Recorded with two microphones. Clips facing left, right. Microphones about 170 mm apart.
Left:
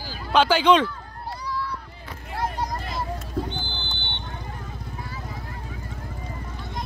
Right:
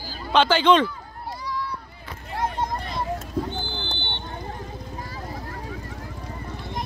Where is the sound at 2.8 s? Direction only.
Centre (ahead or behind).